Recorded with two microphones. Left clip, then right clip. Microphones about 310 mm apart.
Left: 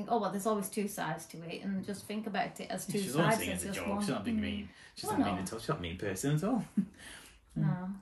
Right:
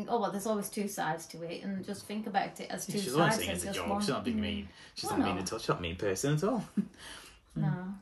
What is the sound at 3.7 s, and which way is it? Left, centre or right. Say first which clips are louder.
Speech: right 4 dB; centre.